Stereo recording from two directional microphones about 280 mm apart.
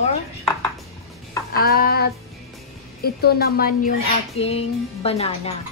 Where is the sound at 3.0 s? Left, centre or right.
Left.